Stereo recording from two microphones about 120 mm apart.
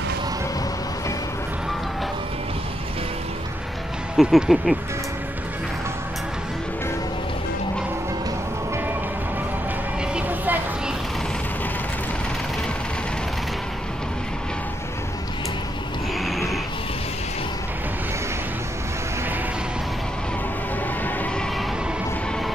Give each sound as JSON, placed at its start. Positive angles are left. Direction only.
{"t": 4.2, "sound": "speech", "side_deg": 0}
{"t": 10.1, "sound": "vehicle", "side_deg": -15}
{"t": 16.3, "sound": "a sound", "side_deg": 0}